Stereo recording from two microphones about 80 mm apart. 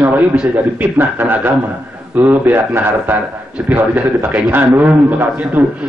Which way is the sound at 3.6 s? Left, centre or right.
Right.